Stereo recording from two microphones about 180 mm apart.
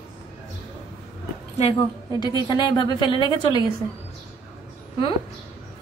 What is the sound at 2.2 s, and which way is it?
A woman's voice, 20° left (ahead or behind).